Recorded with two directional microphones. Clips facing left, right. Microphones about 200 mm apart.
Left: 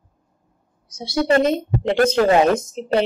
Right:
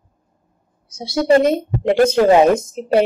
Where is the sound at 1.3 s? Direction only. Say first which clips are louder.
Right 4 dB; 10° right (ahead or behind).